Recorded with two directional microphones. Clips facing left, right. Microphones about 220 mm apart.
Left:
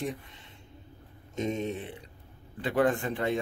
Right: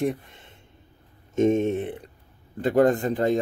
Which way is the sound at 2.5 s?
40° right (ahead or behind).